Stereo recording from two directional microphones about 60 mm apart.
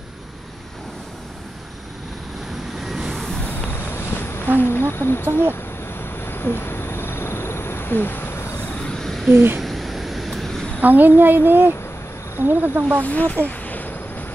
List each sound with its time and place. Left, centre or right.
2.8 s vehicle: centre
3.7 s a sound: left
4.6 s speech: left
5.5 s vehicle: left
8.8 s a sound: centre
9.3 s a woman's voice: right
9.6 s vehicle: centre
10.8 s a woman's voice: right
13.0 s speech: left
13.5 s a sound: left